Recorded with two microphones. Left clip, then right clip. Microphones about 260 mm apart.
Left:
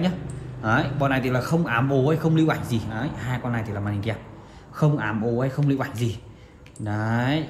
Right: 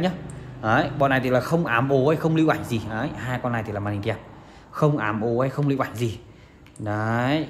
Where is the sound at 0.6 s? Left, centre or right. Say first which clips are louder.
Right 3 dB; right.